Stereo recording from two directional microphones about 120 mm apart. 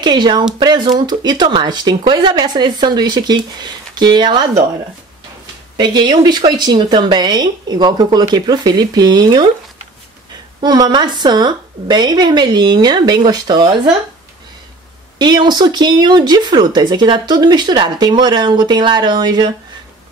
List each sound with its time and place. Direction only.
0.0 s speech: 35° right (ahead or behind)
5.8 s speech: 35° right (ahead or behind)
10.6 s speech: 35° right (ahead or behind)
15.1 s speech: 35° right (ahead or behind)